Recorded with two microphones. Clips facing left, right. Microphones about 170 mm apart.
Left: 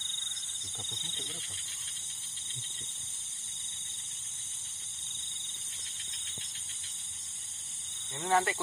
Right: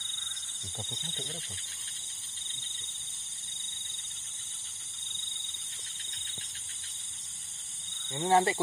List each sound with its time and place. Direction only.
8.1 s speech: 30° right (ahead or behind)